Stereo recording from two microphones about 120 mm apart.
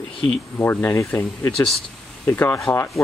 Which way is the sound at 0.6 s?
20° left (ahead or behind).